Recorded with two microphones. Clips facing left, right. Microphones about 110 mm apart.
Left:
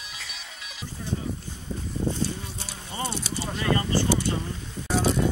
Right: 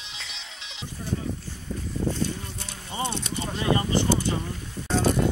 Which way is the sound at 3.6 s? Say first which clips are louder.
Right 1 dB; 20° right (ahead or behind).